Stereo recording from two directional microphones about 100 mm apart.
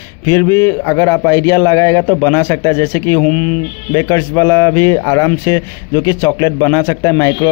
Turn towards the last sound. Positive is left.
turn(degrees=30)  # may be behind; listen again after turning